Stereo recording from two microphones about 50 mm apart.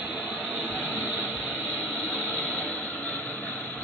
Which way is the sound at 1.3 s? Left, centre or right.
Left.